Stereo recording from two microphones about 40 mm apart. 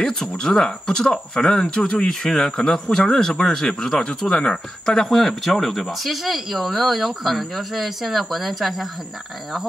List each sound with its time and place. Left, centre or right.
0.3 s speech: centre
5.1 s speech: centre